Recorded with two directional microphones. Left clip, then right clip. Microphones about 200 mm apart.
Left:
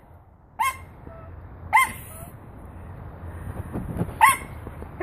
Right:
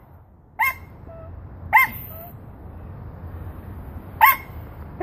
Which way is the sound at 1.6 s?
5° right (ahead or behind).